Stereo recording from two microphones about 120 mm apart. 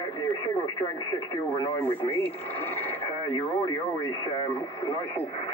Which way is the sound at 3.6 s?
35° left (ahead or behind).